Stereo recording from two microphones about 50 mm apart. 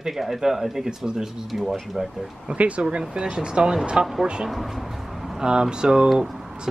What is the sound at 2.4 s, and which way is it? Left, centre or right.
Speech, right.